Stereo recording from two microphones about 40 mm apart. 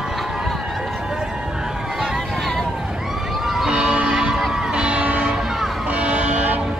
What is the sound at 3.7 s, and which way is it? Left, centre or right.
Music, right.